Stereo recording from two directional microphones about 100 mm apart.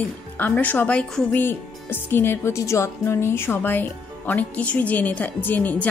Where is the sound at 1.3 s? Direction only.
20° left (ahead or behind).